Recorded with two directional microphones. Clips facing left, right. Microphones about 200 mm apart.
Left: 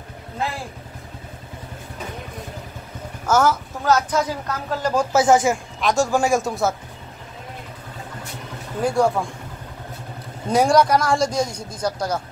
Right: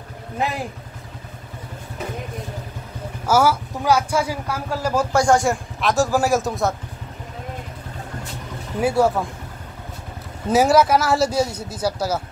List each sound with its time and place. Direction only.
0.4 s speech: 20° right (ahead or behind)
3.3 s speech: 10° right (ahead or behind)
5.1 s speech: 5° left (ahead or behind)
8.7 s speech: 5° right (ahead or behind)
10.5 s speech: 5° right (ahead or behind)